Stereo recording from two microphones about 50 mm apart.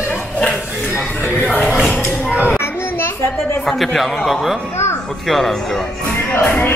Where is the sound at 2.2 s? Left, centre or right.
Right.